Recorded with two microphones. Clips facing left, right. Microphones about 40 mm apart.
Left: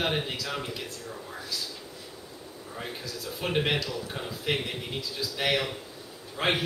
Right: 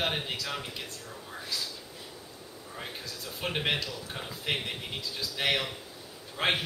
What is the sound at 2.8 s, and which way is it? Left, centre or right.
A man's voice, centre.